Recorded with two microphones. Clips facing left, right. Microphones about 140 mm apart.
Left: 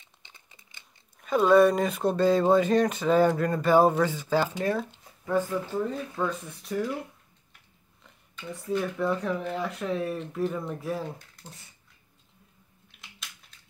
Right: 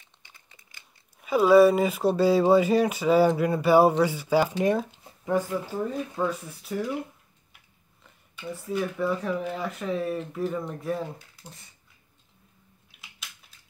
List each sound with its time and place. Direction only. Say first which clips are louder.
0.2 s crumpling: even; 20° left (ahead or behind)
1.2 s speech: right 2 dB; 5° right (ahead or behind)
8.0 s speech: right 3 dB; 5° right (ahead or behind)